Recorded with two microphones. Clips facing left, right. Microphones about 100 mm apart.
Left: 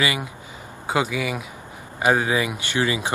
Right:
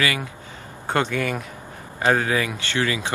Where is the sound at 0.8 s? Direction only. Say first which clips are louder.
Right 1 dB; 5° left (ahead or behind).